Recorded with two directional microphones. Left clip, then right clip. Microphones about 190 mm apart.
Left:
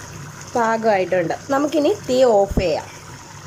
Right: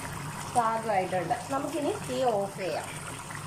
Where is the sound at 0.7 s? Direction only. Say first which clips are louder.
Left 10 dB; 60° left (ahead or behind).